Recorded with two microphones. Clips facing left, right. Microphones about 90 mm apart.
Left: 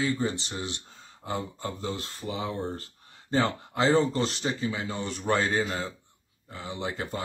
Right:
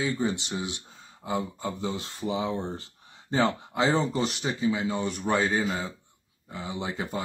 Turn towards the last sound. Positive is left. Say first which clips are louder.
# right 1 dB
turn(degrees=-15)  # may be behind; listen again after turning